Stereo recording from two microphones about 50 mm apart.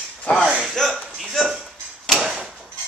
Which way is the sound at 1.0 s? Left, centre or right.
Centre.